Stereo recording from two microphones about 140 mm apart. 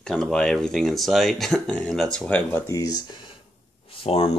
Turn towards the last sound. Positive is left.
turn(degrees=45)  # may be behind; listen again after turning